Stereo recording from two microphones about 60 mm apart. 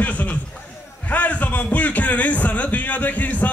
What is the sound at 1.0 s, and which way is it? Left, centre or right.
A man's voice, left.